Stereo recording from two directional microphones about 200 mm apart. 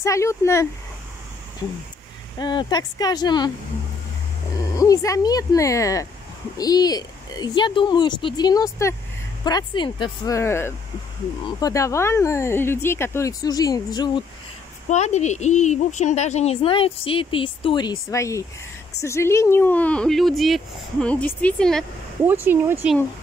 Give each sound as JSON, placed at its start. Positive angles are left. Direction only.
{"t": 0.0, "sound": "speech", "side_deg": 15}
{"t": 2.3, "sound": "a woman's voice", "side_deg": 20}
{"t": 4.7, "sound": "a woman's voice", "side_deg": 15}
{"t": 14.9, "sound": "a woman's voice", "side_deg": 35}
{"t": 22.2, "sound": "speech", "side_deg": -10}